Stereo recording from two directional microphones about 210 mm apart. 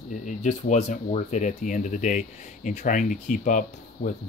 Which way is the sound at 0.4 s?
35° left (ahead or behind).